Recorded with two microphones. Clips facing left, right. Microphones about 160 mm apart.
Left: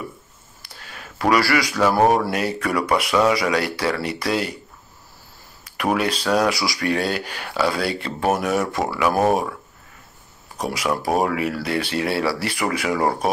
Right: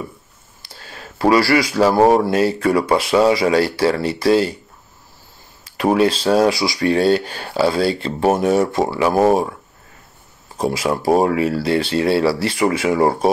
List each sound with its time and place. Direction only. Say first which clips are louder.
0.6 s speech: right 3 dB; 30° right (ahead or behind)
5.6 s speech: right 6 dB; 25° right (ahead or behind)
10.6 s speech: right 4 dB; 25° right (ahead or behind)